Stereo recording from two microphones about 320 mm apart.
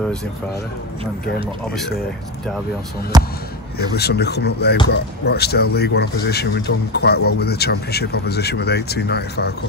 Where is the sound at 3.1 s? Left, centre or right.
Centre.